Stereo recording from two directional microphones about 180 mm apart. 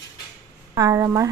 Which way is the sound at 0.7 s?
20° right (ahead or behind).